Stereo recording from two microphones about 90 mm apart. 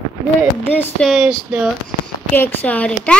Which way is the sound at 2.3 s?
20° left (ahead or behind).